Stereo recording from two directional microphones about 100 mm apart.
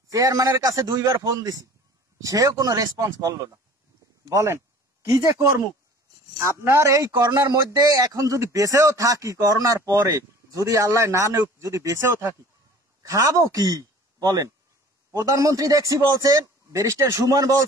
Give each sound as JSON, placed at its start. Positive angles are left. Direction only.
{"t": 0.1, "sound": "a man's voice", "side_deg": -35}
{"t": 6.6, "sound": "a man's voice", "side_deg": -30}